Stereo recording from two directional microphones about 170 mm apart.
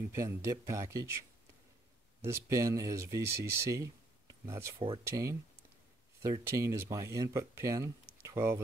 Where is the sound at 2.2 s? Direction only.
20° right (ahead or behind).